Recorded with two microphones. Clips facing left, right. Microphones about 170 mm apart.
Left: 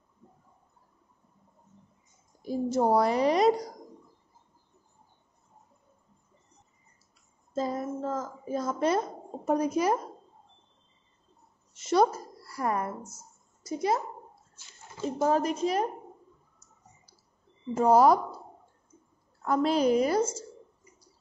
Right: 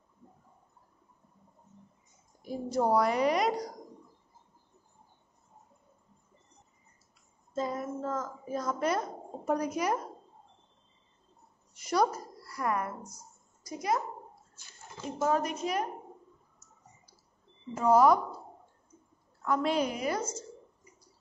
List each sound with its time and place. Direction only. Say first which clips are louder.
2.4 s a woman's voice: left 4 dB; 30° left (ahead or behind)
7.5 s a woman's voice: left 3 dB; 35° left (ahead or behind)
11.7 s a woman's voice: left 4 dB; 25° left (ahead or behind)
15.1 s a woman's voice: left 3 dB; 30° left (ahead or behind)
17.7 s a woman's voice: left 2 dB; 35° left (ahead or behind)
19.4 s a woman's voice: left 4 dB; 35° left (ahead or behind)